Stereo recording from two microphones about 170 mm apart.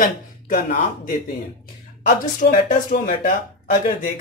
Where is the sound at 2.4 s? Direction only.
55° left (ahead or behind).